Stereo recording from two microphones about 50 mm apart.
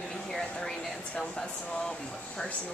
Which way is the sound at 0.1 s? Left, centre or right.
Centre.